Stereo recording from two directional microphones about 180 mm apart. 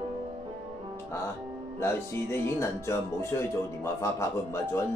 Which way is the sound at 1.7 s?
15° left (ahead or behind).